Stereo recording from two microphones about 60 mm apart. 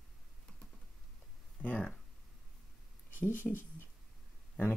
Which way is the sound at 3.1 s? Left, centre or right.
Left.